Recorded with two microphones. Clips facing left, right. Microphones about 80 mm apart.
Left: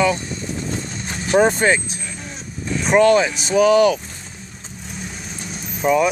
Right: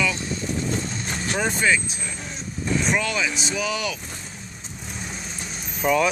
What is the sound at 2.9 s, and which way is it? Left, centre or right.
Speech, left.